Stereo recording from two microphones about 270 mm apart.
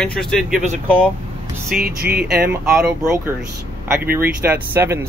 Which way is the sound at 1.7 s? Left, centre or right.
Right.